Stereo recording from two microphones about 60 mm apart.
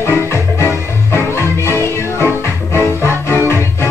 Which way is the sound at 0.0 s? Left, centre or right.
Left.